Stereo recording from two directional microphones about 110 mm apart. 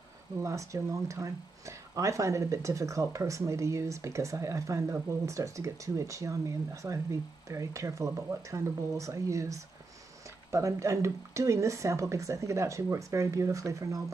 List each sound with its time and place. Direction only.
0.4 s speech: 30° right (ahead or behind)